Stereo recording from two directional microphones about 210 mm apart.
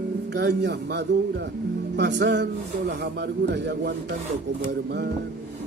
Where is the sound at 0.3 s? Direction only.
55° right (ahead or behind).